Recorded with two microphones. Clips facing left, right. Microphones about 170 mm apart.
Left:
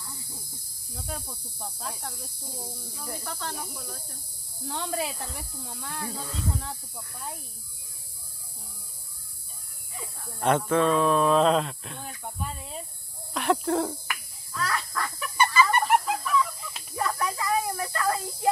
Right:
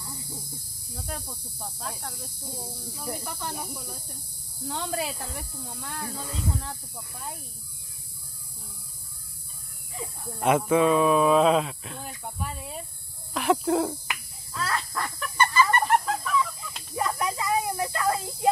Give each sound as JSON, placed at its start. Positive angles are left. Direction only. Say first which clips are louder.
{"t": 0.9, "sound": "speech", "louder": "even", "side_deg": 0}
{"t": 2.9, "sound": "speech", "louder": "right 4 dB", "side_deg": -15}
{"t": 4.6, "sound": "speech", "louder": "even", "side_deg": 0}
{"t": 10.4, "sound": "speech", "louder": "right 2 dB", "side_deg": -10}
{"t": 14.6, "sound": "fowl", "louder": "even", "side_deg": -30}
{"t": 15.1, "sound": "chicken", "louder": "even", "side_deg": 5}
{"t": 15.9, "sound": "fowl", "louder": "even", "side_deg": 5}
{"t": 16.9, "sound": "a sound", "louder": "right 1 dB", "side_deg": -20}